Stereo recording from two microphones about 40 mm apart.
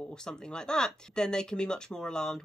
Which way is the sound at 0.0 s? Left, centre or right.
Centre.